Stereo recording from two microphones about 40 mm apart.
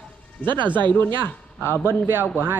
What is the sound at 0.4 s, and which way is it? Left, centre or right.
Speech, left.